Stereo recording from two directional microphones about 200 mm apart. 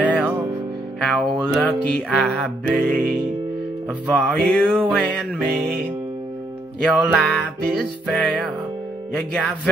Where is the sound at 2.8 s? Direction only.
45° right (ahead or behind).